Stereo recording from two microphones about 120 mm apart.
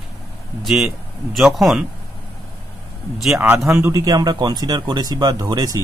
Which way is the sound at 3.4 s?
20° right (ahead or behind).